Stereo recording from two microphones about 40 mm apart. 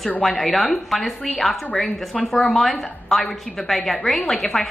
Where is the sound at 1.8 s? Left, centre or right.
Left.